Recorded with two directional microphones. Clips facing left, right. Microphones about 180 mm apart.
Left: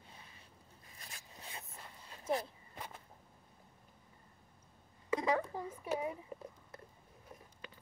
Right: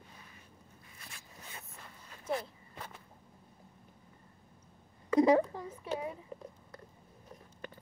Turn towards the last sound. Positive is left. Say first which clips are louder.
# even
turn(degrees=20)  # may be behind; listen again after turning